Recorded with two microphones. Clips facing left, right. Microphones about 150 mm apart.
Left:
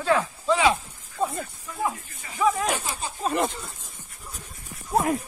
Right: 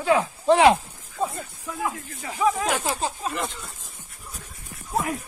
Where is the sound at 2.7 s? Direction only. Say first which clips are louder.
Right 5 dB; 85° right.